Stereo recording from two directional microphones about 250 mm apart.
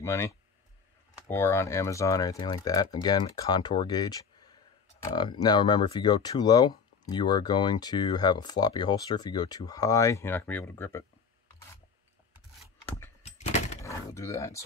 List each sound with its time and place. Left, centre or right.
0.0 s speech: centre
13.2 s a sound: left
13.8 s door: centre